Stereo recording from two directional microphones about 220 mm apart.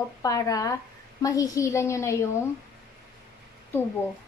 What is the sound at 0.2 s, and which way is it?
A woman's voice, 15° left (ahead or behind).